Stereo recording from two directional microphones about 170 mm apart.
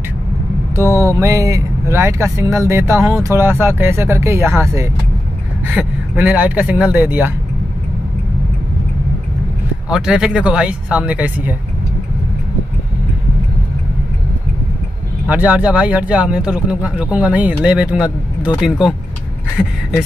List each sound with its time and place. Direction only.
0.7 s speech: 15° right (ahead or behind)
9.8 s speech: 5° right (ahead or behind)
15.2 s speech: 10° right (ahead or behind)